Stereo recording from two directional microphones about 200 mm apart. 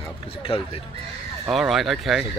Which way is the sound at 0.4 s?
25° left (ahead or behind).